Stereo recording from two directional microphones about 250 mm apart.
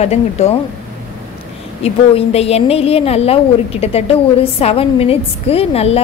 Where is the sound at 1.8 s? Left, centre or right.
Left.